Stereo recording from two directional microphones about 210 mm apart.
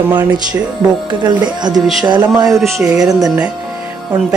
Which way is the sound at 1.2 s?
20° right (ahead or behind).